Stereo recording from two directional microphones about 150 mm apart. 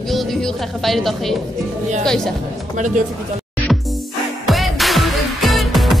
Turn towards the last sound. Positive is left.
turn(degrees=0)  # may be behind; listen again after turning